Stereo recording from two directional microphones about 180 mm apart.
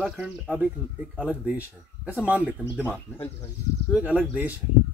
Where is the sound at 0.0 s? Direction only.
5° right (ahead or behind).